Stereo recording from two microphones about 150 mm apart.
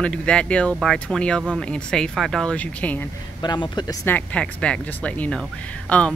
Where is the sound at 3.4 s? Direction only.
30° left (ahead or behind).